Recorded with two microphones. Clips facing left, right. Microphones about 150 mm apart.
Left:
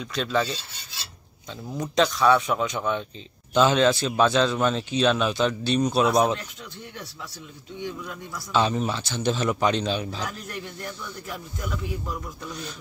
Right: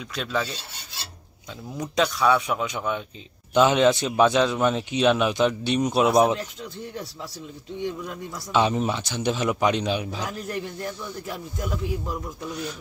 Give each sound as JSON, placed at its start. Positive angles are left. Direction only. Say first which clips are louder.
{"t": 0.0, "sound": "filing", "louder": "left 3 dB", "side_deg": -5}
{"t": 1.8, "sound": "a man's voice", "louder": "left 1 dB", "side_deg": -5}
{"t": 8.1, "sound": "a man's voice", "louder": "left 2 dB", "side_deg": -15}